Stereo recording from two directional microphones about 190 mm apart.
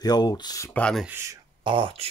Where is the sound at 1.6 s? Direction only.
25° right (ahead or behind).